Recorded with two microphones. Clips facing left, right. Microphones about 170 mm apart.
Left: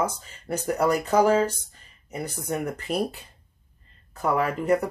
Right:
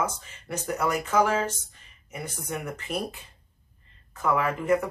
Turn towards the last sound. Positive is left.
turn(degrees=35)  # may be behind; listen again after turning